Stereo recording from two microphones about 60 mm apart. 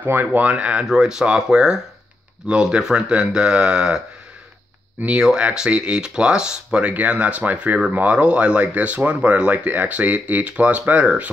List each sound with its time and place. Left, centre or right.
0.0 s speech: right; by 4.0 s centre
5.0 s speech: centre